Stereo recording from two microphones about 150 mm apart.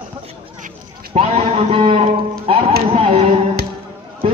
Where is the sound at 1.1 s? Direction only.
45° right (ahead or behind).